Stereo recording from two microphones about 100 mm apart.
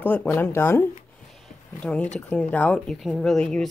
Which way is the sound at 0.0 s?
20° left (ahead or behind).